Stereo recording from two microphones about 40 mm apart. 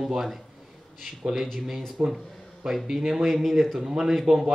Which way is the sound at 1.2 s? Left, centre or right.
Right.